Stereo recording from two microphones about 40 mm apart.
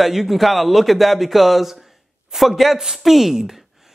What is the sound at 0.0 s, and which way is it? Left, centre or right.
A man's voice, centre.